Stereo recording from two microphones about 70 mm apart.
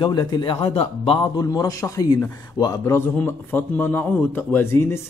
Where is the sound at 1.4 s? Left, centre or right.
Left.